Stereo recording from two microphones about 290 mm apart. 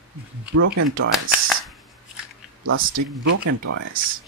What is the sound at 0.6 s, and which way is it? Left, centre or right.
Speech, right.